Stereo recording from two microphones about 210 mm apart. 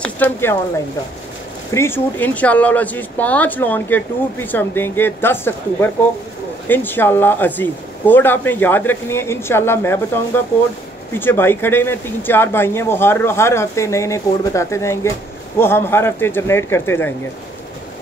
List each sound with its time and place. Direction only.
0.0 s speech: 10° left (ahead or behind)
1.7 s speech: 10° left (ahead or behind)